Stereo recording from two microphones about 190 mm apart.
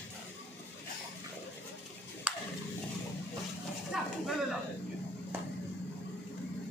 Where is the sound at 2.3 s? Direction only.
5° right (ahead or behind).